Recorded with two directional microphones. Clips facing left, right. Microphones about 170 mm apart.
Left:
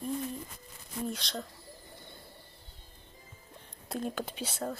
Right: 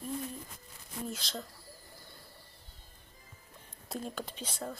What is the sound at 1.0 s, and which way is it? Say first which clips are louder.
Speech: left 3 dB; centre (ahead or behind).